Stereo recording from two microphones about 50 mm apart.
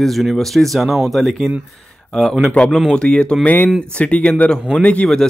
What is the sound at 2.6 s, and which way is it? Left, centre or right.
Speech, left.